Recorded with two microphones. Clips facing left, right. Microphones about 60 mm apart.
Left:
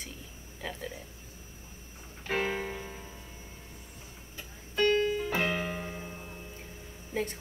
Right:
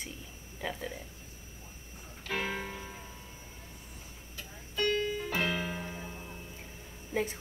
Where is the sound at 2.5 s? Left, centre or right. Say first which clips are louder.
Left 3 dB; centre.